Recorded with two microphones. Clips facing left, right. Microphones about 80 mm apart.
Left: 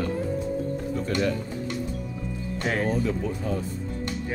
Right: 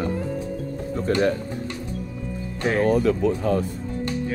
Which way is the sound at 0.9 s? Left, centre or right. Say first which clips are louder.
Right 6 dB; right.